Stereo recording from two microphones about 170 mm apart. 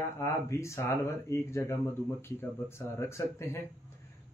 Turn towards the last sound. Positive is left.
turn(degrees=15)  # may be behind; listen again after turning